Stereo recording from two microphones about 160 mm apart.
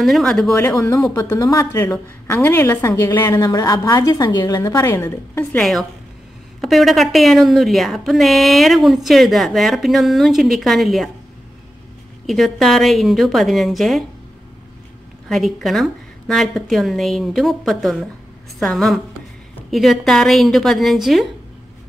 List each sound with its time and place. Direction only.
0.0 s a woman's voice: centre (ahead or behind)
0.6 s a woman's voice: 20° left (ahead or behind); by 11.1 s centre (ahead or behind)
12.3 s a woman's voice: centre (ahead or behind)
15.2 s a woman's voice: centre (ahead or behind)